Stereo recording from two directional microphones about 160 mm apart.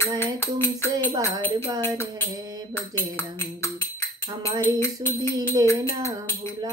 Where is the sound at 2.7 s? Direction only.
15° left (ahead or behind).